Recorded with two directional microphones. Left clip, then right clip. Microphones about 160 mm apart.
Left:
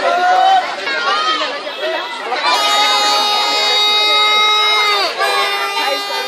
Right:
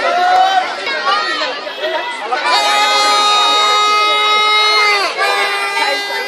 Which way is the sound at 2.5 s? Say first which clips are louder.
Right 1 dB; 10° left (ahead or behind).